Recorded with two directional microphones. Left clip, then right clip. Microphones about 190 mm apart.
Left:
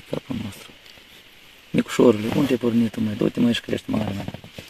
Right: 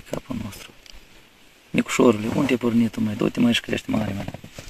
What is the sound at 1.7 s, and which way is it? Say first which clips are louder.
Speech: left 1 dB; 25° left (ahead or behind).